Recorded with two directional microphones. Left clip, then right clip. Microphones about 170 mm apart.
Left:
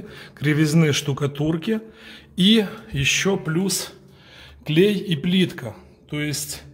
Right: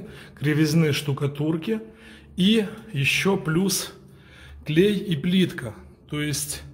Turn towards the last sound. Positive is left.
turn(degrees=0)  # may be behind; listen again after turning